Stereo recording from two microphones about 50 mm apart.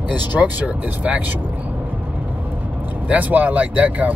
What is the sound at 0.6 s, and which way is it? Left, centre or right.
Speech, right.